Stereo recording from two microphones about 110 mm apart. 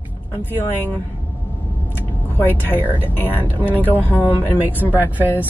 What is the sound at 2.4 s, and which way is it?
Speech, 15° left (ahead or behind).